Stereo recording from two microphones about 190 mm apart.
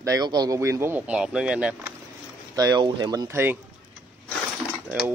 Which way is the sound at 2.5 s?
20° right (ahead or behind).